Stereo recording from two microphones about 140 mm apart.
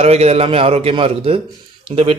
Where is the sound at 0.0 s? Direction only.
50° right (ahead or behind).